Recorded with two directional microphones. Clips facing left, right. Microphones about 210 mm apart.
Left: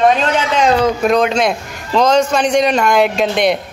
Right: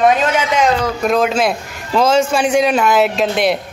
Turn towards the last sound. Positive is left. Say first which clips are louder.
# left 1 dB
turn(degrees=0)  # may be behind; listen again after turning